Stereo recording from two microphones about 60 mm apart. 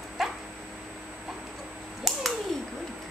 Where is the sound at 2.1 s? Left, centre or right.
Centre.